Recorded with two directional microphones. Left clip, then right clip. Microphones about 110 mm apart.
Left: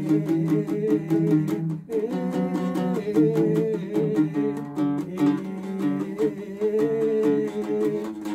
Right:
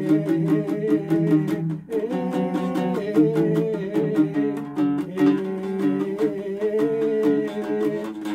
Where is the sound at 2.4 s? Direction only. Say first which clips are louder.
Right 2 dB; 15° right (ahead or behind).